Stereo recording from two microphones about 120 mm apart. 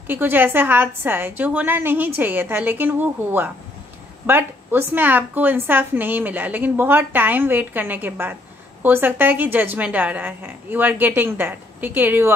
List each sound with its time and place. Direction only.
0.0 s speech: 15° right (ahead or behind)